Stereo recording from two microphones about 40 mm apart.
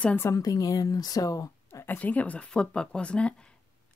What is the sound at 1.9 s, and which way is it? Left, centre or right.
Speech, left.